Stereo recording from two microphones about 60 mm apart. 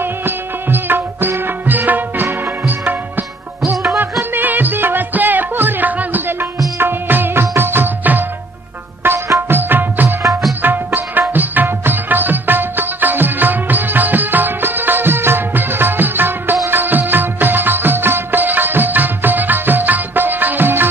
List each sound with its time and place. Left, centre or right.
0.0 s music: right
16.6 s music of bollywood: right